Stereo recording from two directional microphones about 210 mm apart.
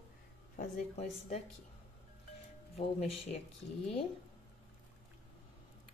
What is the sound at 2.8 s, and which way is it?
Speech, 30° left (ahead or behind).